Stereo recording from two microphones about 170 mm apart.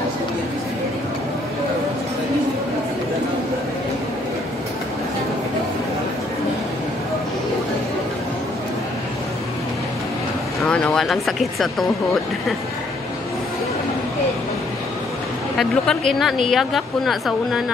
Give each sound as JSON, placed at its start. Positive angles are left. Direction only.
{"t": 10.6, "sound": "speech", "side_deg": 5}
{"t": 15.5, "sound": "a woman's voice", "side_deg": 5}